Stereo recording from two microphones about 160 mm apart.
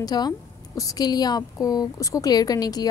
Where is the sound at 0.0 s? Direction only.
25° left (ahead or behind).